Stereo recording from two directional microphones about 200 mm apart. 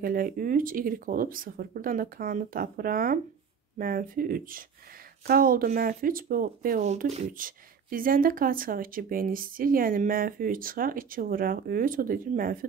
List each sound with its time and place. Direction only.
0.0 s speech: 45° right (ahead or behind)